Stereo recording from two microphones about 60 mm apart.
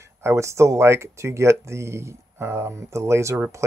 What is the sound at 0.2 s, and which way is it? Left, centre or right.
Speech, right.